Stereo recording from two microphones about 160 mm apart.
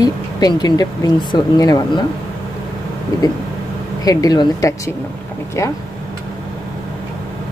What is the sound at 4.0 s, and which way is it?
Speech, 20° left (ahead or behind).